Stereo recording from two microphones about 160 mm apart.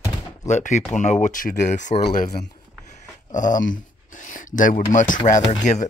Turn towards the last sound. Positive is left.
turn(degrees=50)  # may be behind; listen again after turning